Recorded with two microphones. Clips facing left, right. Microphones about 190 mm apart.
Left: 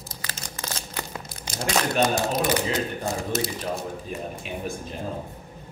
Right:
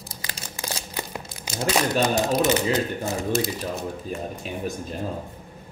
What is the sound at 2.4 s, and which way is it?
Speech, 25° right (ahead or behind).